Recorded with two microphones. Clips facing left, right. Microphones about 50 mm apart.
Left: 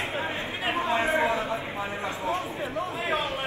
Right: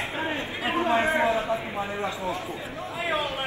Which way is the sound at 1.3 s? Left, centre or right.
Left.